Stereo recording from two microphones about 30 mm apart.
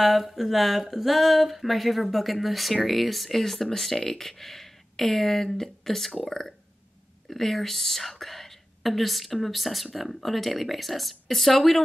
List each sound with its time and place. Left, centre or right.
0.0 s speech: centre